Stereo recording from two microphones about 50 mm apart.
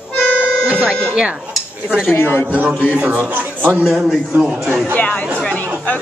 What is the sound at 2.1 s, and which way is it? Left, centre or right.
Speech, left.